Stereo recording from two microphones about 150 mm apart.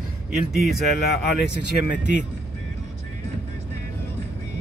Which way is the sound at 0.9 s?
90° left.